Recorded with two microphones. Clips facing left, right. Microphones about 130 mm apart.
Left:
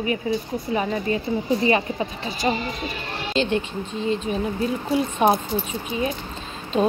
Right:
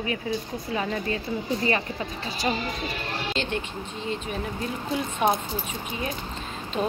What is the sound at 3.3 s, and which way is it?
Speech, 20° left (ahead or behind).